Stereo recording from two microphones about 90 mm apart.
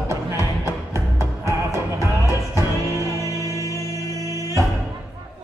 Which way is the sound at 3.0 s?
35° left (ahead or behind).